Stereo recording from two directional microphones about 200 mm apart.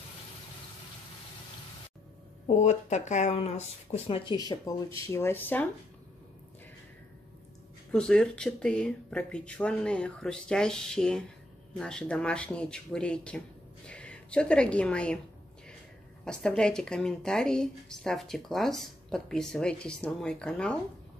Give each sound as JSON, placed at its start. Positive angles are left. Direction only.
{"t": 2.4, "sound": "speech", "side_deg": 35}
{"t": 7.9, "sound": "a woman's voice", "side_deg": 5}
{"t": 16.3, "sound": "speech", "side_deg": 5}